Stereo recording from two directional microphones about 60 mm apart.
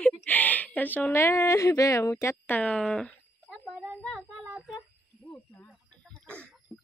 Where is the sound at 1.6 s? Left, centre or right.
Left.